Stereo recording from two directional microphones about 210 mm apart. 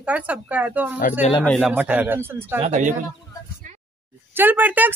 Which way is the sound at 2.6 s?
35° right (ahead or behind).